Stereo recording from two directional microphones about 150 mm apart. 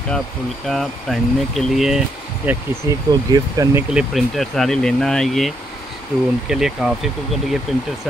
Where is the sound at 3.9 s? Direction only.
5° right (ahead or behind).